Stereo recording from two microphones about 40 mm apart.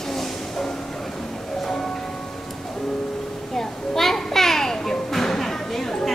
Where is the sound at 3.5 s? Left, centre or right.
Centre.